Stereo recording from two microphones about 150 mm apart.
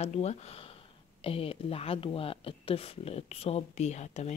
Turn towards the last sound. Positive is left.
turn(degrees=50)  # may be behind; listen again after turning